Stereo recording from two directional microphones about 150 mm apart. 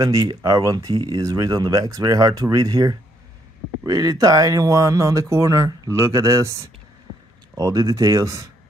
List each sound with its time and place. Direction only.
0.0 s speech: 25° right (ahead or behind)